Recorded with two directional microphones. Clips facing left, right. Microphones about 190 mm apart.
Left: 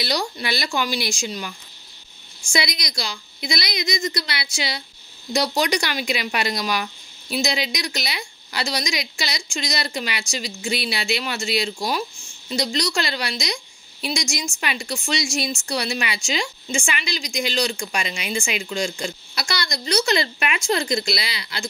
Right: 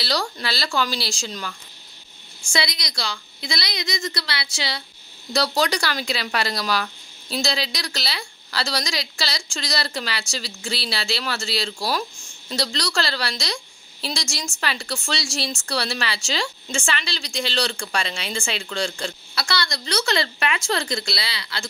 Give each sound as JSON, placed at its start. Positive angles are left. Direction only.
{"t": 0.0, "sound": "speech", "side_deg": 15}
{"t": 2.5, "sound": "speech", "side_deg": 20}
{"t": 14.6, "sound": "speech", "side_deg": 15}